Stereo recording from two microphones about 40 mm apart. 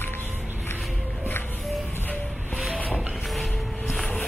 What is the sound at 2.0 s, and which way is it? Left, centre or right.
Train, left.